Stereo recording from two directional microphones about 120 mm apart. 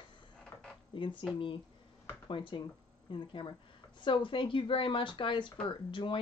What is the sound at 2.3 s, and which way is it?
Speech, 40° left (ahead or behind).